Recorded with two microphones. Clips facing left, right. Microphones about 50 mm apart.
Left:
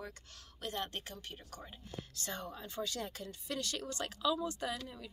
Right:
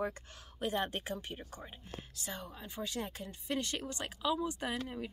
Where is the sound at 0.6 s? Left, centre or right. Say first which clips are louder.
Right 5 dB; centre.